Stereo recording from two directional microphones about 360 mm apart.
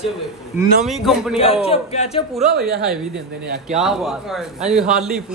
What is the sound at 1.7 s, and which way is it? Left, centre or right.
Speech, centre.